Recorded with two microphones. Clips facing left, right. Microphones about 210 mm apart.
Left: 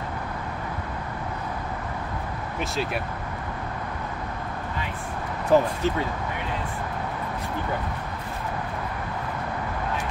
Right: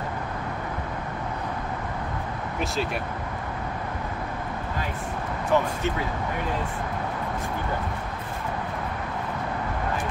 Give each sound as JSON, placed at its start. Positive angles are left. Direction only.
{"t": 2.6, "sound": "speech", "side_deg": 0}
{"t": 5.5, "sound": "speech", "side_deg": 35}